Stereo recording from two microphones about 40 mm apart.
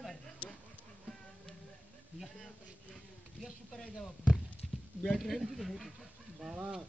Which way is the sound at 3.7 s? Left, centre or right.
Centre.